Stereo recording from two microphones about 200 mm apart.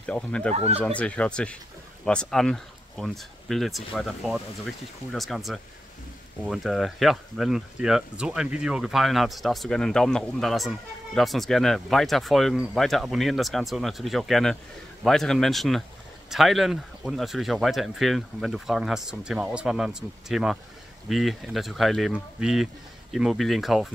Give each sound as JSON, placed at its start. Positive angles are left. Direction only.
{"t": 0.0, "sound": "speech", "side_deg": 5}
{"t": 0.5, "sound": "speech", "side_deg": -30}
{"t": 0.8, "sound": "speech", "side_deg": 5}